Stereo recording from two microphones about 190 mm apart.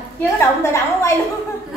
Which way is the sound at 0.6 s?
15° left (ahead or behind).